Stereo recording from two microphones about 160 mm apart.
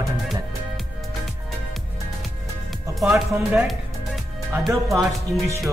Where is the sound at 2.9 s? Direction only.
Centre (ahead or behind).